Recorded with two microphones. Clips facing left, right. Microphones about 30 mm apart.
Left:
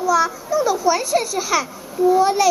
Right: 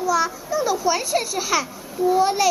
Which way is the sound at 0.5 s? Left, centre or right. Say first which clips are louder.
Left 3 dB; right.